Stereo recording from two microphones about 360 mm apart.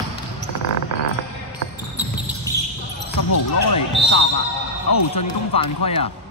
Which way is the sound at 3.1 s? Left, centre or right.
Left.